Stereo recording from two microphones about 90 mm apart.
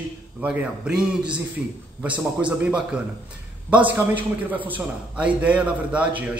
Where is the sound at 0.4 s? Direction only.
10° right (ahead or behind).